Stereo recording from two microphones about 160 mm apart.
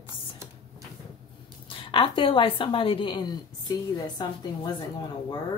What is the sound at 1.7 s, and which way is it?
A woman's voice, 30° left (ahead or behind).